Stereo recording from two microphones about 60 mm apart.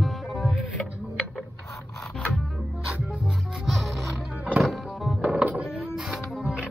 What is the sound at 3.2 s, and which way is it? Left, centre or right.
Music, centre.